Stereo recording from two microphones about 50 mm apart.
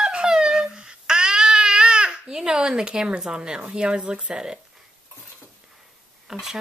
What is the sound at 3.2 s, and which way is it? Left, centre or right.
Speech, centre.